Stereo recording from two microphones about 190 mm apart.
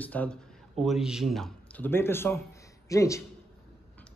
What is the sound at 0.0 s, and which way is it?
Speech, 10° left (ahead or behind).